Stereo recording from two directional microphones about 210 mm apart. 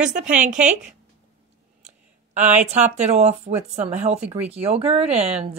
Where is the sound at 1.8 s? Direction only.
35° right (ahead or behind).